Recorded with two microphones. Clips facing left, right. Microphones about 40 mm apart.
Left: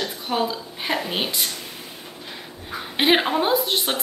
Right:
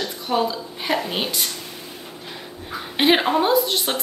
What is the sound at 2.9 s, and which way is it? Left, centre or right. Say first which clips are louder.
A woman's voice: right 1 dB; centre.